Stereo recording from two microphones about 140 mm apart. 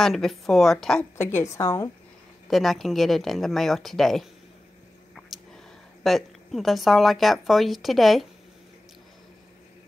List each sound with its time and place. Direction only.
0.0 s a woman's voice: centre (ahead or behind)
1.1 s a woman's voice: 15° left (ahead or behind)
2.4 s a woman's voice: centre (ahead or behind)
6.0 s a woman's voice: centre (ahead or behind)